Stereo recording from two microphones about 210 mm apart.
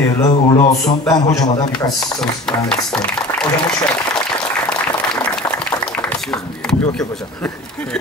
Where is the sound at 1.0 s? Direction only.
15° left (ahead or behind).